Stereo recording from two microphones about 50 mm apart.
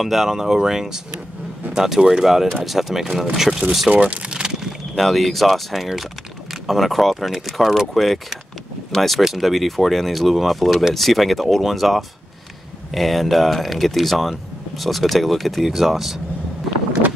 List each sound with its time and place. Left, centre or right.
0.0 s speech: centre
3.9 s speech: right
4.3 s a sound: centre
4.9 s speech: centre